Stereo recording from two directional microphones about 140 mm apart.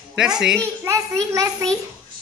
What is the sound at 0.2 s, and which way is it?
Speech, 5° right (ahead or behind).